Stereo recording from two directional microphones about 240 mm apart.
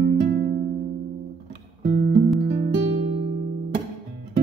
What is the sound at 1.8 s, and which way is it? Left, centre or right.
Music, right.